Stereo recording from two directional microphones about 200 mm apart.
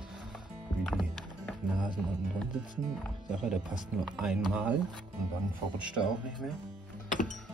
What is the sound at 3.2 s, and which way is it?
Speech, 5° right (ahead or behind).